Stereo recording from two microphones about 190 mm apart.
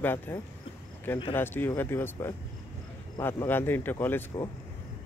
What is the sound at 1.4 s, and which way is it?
Speech, 10° left (ahead or behind).